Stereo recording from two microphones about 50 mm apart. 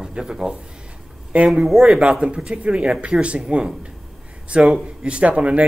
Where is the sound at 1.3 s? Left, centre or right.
Right.